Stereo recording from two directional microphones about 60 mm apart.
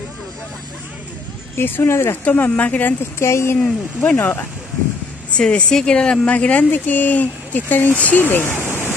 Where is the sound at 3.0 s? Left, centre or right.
Left.